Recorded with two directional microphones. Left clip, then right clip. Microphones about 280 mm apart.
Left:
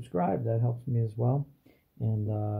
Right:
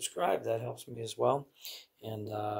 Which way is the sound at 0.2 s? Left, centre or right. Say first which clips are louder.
Even; centre.